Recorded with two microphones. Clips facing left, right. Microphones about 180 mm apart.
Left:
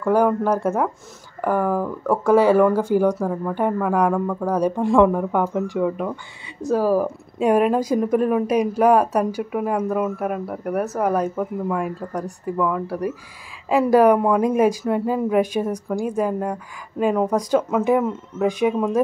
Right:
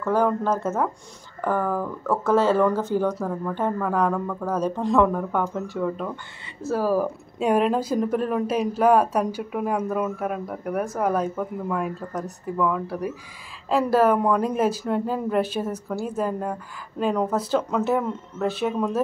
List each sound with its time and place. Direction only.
0.0 s speech: 10° left (ahead or behind)